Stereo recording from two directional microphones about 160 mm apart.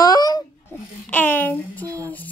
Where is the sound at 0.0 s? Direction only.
25° left (ahead or behind).